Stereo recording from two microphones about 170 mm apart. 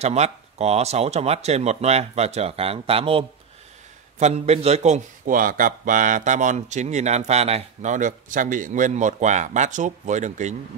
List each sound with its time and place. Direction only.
0.0 s a man's voice: 40° right (ahead or behind)